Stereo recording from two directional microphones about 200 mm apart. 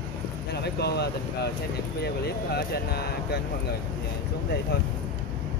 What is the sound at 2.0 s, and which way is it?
Speech, 50° left (ahead or behind).